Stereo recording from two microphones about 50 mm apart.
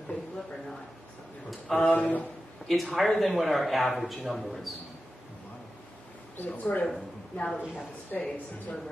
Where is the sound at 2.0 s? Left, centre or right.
Left.